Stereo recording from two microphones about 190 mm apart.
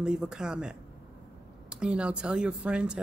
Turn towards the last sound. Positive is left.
turn(degrees=-5)  # may be behind; listen again after turning